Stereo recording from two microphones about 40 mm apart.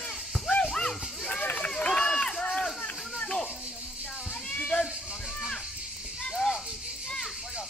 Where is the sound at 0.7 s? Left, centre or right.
Centre.